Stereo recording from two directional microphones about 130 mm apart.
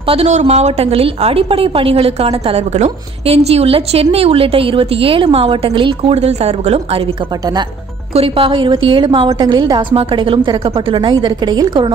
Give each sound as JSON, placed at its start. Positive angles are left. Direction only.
{"t": 0.0, "sound": "a woman's voice", "side_deg": -45}
{"t": 0.3, "sound": "a woman's voice", "side_deg": -60}
{"t": 8.1, "sound": "a woman's voice", "side_deg": -45}